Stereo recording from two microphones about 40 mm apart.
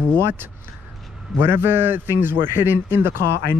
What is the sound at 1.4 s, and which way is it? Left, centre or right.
A man's voice, right.